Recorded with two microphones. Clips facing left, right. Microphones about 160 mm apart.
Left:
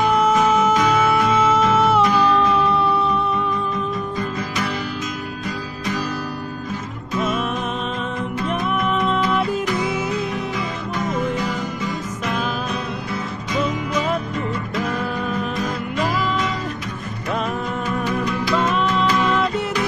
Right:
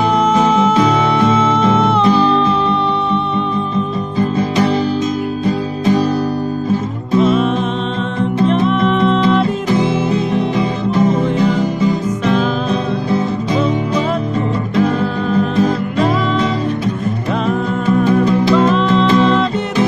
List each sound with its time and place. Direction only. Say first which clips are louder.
0.3 s music: right 4 dB; 30° right (ahead or behind)
4.2 s music: right 10 dB; 25° right (ahead or behind)
7.1 s music: right 10 dB; 30° right (ahead or behind)
8.8 s music: right 7 dB; 5° left (ahead or behind)
9.2 s music: right 6 dB; 25° right (ahead or behind)
15.5 s music: right 9 dB; 25° right (ahead or behind)
18.2 s music: right 9 dB; 25° right (ahead or behind)